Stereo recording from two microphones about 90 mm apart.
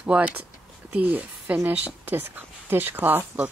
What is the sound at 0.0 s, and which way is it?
Speech, 15° right (ahead or behind).